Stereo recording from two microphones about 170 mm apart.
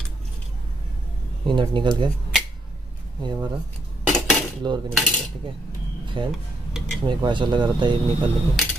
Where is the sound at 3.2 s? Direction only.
25° right (ahead or behind).